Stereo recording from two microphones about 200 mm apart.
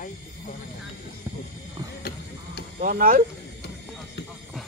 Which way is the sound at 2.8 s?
45° right (ahead or behind).